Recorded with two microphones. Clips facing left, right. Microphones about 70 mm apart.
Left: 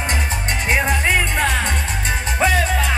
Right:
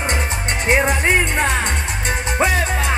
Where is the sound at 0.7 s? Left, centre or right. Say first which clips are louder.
Right 2 dB; right.